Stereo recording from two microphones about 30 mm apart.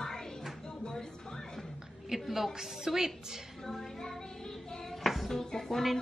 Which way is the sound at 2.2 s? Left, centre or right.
Centre.